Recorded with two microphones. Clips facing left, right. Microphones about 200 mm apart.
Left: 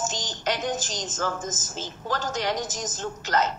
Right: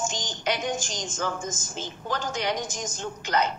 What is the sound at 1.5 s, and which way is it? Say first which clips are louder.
Speech: even; 40° left (ahead or behind).